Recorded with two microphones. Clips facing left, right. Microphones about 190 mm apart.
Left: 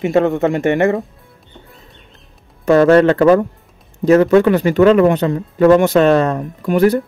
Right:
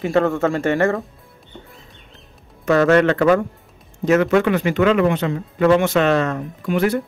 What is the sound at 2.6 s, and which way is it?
Speech, 35° left (ahead or behind).